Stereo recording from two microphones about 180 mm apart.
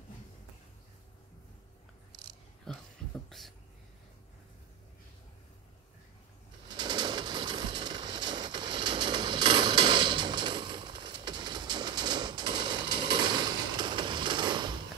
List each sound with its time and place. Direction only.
2.7 s speech: centre (ahead or behind)
3.3 s a sound: centre (ahead or behind)
6.7 s bird: 25° right (ahead or behind)